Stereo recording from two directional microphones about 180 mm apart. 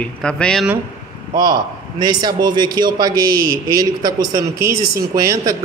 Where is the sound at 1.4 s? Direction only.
25° right (ahead or behind).